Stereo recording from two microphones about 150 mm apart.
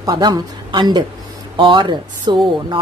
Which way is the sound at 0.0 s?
25° right (ahead or behind).